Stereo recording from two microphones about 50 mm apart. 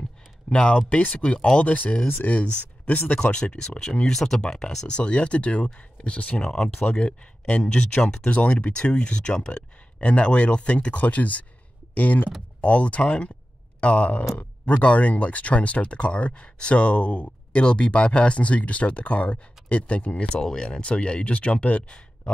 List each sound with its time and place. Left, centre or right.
0.5 s speech: left
3.0 s speech: left
3.3 s speech: left
20.3 s speech: centre